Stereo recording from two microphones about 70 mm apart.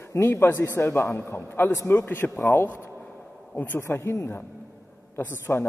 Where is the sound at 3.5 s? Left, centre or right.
Left.